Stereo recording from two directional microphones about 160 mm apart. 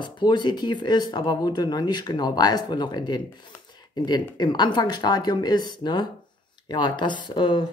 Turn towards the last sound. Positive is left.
turn(degrees=30)  # may be behind; listen again after turning